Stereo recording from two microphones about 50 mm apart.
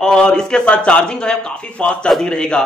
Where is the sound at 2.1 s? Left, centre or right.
Centre.